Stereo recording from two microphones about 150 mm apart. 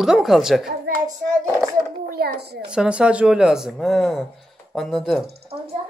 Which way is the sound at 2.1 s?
90° right.